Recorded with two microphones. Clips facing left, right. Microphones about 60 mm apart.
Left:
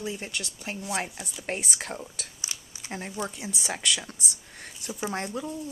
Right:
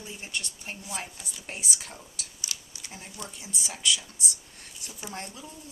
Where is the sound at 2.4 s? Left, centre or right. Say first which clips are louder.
Right 2 dB; left.